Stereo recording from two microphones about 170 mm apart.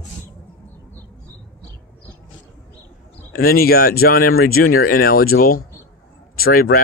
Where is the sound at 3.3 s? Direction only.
60° left (ahead or behind).